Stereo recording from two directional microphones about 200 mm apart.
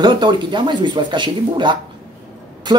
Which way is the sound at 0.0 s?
25° right (ahead or behind).